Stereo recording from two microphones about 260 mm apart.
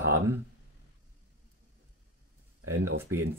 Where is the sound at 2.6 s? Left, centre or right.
Right.